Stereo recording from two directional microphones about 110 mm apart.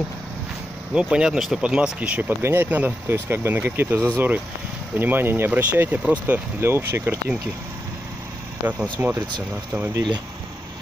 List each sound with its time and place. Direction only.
0.9 s speech: 10° right (ahead or behind)
8.6 s speech: 15° right (ahead or behind)